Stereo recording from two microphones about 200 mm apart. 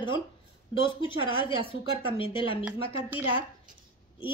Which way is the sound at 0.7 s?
25° left (ahead or behind).